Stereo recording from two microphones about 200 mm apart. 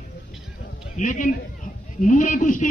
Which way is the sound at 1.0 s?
40° left (ahead or behind).